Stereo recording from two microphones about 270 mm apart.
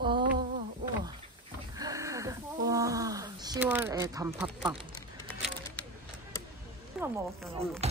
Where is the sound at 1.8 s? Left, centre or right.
Centre.